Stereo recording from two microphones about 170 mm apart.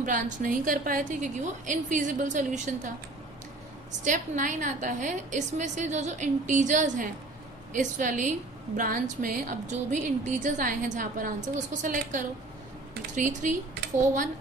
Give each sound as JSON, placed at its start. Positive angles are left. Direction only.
{"t": 0.0, "sound": "a woman's voice", "side_deg": -50}
{"t": 4.0, "sound": "a woman's voice", "side_deg": -45}